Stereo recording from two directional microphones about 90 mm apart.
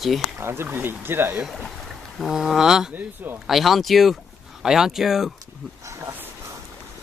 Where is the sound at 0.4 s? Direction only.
25° right (ahead or behind).